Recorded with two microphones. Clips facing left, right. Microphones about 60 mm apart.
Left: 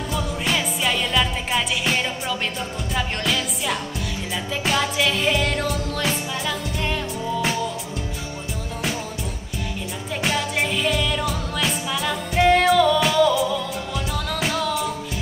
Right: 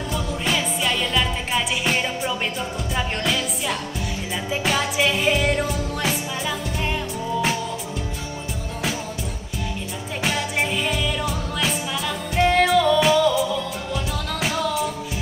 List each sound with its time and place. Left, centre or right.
0.1 s music: centre
10.7 s music: centre